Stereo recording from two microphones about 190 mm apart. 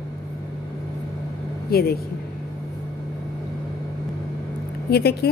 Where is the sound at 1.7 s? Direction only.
55° left (ahead or behind).